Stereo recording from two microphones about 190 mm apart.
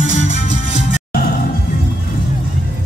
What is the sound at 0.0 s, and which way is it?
Music, 40° left (ahead or behind).